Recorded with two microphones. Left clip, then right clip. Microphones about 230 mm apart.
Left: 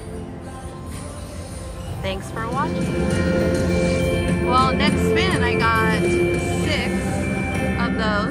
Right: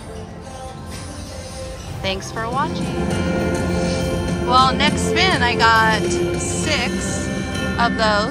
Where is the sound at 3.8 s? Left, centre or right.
Centre.